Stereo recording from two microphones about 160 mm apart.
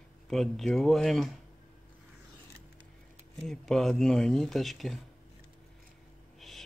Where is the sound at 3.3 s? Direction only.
Centre (ahead or behind).